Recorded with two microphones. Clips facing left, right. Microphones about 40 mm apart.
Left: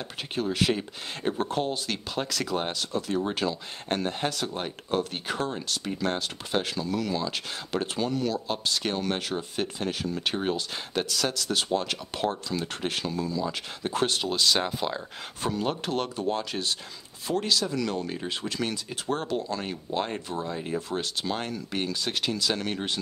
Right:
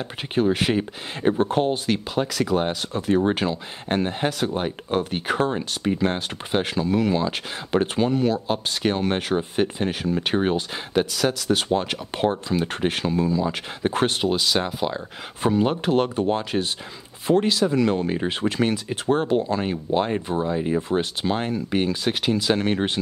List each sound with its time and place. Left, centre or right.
0.3 s speech: right
2.1 s speech: centre
2.8 s speech: right
3.9 s speech: centre
10.7 s speech: centre
11.5 s speech: right
14.3 s speech: centre
15.4 s speech: centre